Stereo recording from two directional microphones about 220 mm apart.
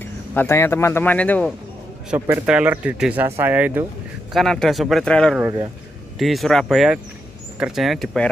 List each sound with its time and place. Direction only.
0.0 s speech: 10° left (ahead or behind)
2.0 s speech: 10° right (ahead or behind)
5.4 s speech: 20° right (ahead or behind)
6.1 s speech: centre (ahead or behind)